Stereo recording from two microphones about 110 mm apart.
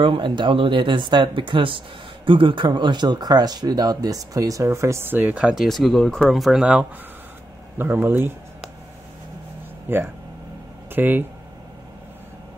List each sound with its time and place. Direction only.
0.0 s speech: 50° right (ahead or behind); by 5.4 s 15° right (ahead or behind)
5.4 s speech: 5° right (ahead or behind)
7.7 s speech: 20° right (ahead or behind)
9.8 s speech: 20° right (ahead or behind)